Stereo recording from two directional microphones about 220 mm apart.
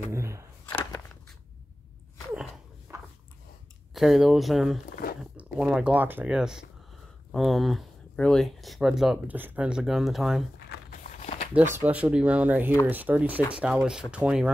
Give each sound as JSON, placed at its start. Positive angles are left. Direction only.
{"t": 0.1, "sound": "speech", "side_deg": -15}
{"t": 2.9, "sound": "a sound", "side_deg": -10}
{"t": 3.9, "sound": "speech", "side_deg": 0}
{"t": 10.7, "sound": "walk", "side_deg": 35}
{"t": 11.7, "sound": "speech", "side_deg": -5}